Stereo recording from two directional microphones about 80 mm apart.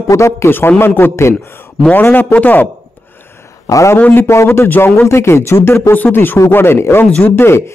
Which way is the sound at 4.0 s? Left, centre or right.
Left.